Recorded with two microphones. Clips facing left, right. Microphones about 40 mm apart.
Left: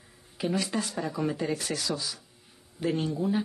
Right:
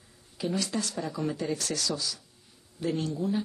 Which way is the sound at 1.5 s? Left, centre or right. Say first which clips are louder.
Even; centre.